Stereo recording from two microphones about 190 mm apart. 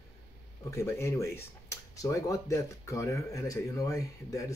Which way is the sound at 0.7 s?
15° left (ahead or behind).